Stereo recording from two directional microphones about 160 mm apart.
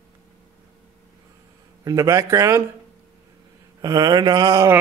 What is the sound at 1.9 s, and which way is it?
Speech, 20° right (ahead or behind).